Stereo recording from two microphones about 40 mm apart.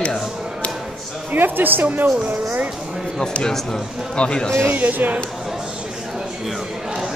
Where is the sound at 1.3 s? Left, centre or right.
Right.